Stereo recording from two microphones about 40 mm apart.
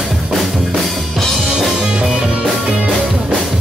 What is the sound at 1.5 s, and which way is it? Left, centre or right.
Music, centre.